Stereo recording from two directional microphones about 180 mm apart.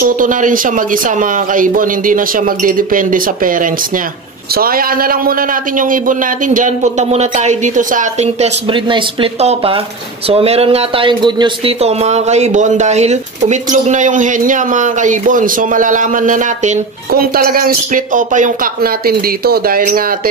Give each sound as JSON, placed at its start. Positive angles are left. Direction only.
{"t": 0.0, "sound": "speech", "side_deg": -50}
{"t": 17.1, "sound": "speech", "side_deg": -55}